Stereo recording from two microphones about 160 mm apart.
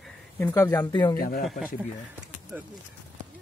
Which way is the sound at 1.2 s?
65° left (ahead or behind).